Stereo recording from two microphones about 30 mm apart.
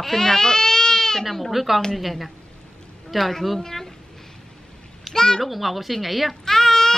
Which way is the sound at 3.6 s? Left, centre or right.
Centre.